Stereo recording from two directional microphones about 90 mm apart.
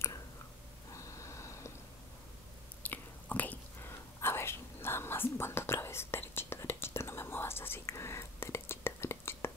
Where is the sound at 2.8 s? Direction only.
20° left (ahead or behind).